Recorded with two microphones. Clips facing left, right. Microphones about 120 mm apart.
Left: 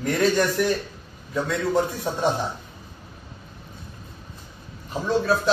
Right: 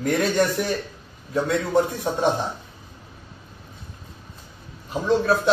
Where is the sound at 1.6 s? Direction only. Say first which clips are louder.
Right 1 dB; 20° right (ahead or behind).